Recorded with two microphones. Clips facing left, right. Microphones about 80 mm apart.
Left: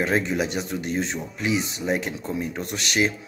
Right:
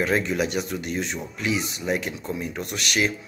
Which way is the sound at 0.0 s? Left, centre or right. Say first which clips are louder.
Even; left.